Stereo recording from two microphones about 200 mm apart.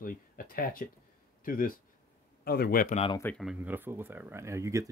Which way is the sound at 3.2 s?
5° left (ahead or behind).